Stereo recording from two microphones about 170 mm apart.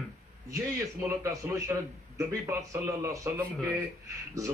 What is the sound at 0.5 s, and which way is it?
Speech, 20° right (ahead or behind).